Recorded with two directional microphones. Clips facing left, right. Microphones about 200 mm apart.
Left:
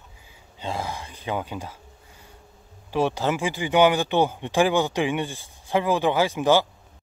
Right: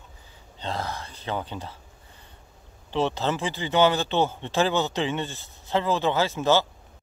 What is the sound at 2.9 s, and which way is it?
Speech, 10° left (ahead or behind).